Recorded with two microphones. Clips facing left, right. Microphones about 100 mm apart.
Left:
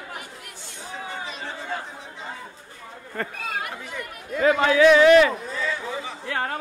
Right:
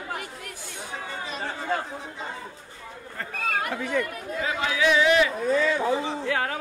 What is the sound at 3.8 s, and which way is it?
Speech, 65° right (ahead or behind).